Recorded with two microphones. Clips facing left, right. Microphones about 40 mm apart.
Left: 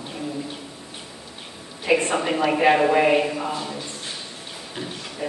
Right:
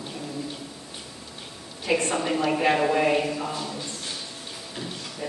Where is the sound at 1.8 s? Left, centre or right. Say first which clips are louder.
Left 4 dB; left.